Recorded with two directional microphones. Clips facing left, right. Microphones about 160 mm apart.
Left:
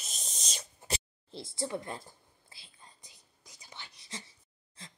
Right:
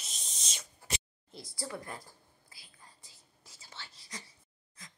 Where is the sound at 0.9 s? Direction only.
25° left (ahead or behind).